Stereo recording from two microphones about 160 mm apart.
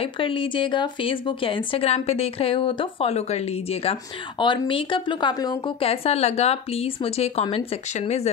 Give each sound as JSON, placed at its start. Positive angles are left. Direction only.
{"t": 0.0, "sound": "a woman's voice", "side_deg": 35}
{"t": 4.4, "sound": "speech", "side_deg": 30}
{"t": 5.9, "sound": "a woman's voice", "side_deg": 40}